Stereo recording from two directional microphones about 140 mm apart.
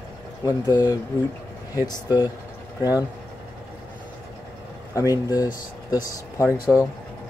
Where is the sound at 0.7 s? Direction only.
25° left (ahead or behind).